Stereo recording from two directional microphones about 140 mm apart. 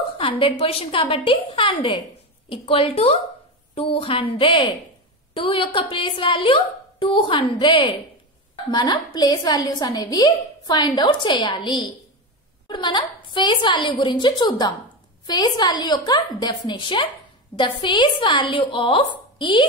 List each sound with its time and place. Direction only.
0.2 s a woman's voice: 40° left (ahead or behind)